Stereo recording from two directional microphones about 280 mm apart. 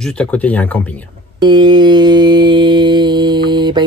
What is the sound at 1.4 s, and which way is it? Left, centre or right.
Mantra, centre.